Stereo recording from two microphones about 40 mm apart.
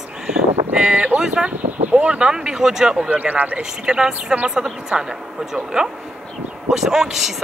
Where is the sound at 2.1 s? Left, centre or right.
Right.